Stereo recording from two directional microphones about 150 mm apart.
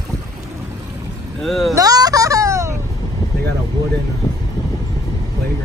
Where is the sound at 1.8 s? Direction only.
25° right (ahead or behind).